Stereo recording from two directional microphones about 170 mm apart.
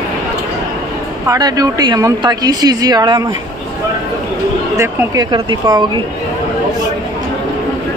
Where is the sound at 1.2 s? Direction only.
20° right (ahead or behind).